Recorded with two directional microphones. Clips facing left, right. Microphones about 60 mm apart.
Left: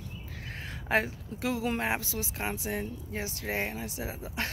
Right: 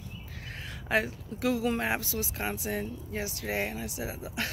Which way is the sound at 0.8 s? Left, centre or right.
Left.